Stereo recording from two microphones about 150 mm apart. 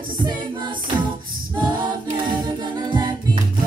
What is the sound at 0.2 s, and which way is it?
A capella, 30° right (ahead or behind).